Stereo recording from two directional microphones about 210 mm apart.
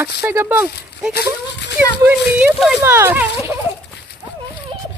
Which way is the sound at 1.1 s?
50° left (ahead or behind).